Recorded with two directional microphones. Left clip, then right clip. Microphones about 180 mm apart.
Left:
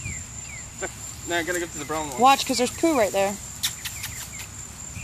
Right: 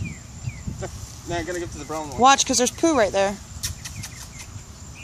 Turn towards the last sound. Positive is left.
turn(degrees=-10)  # may be behind; listen again after turning